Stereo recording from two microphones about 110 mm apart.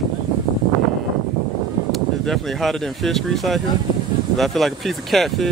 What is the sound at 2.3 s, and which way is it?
Speech, 5° left (ahead or behind).